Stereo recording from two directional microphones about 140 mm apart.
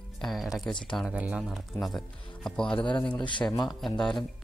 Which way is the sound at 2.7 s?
35° left (ahead or behind).